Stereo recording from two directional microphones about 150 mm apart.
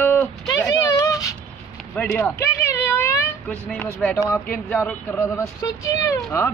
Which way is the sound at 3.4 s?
10° left (ahead or behind).